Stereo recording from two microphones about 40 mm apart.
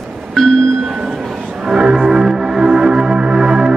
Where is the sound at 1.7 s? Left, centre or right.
Right.